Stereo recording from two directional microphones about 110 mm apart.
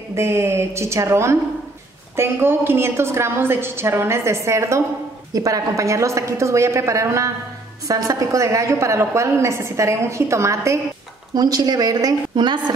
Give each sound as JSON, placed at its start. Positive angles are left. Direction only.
{"t": 0.1, "sound": "a woman's voice", "side_deg": -25}